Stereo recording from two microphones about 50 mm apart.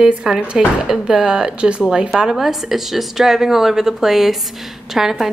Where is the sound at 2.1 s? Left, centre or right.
Centre.